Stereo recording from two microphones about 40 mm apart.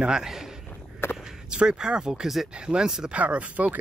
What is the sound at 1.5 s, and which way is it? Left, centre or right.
Speech, right.